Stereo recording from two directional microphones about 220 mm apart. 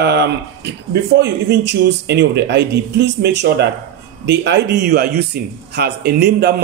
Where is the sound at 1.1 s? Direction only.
50° right (ahead or behind).